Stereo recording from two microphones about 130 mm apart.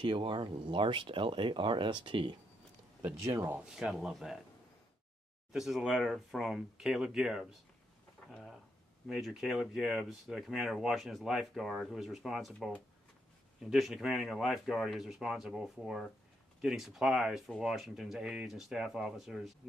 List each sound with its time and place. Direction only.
0.0 s speech: 40° right (ahead or behind)
3.0 s speech: 20° right (ahead or behind)
3.5 s speech: 5° right (ahead or behind)
5.5 s speech: centre (ahead or behind)